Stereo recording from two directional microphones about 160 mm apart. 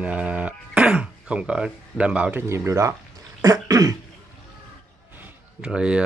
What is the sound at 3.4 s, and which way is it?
Cough, 20° right (ahead or behind).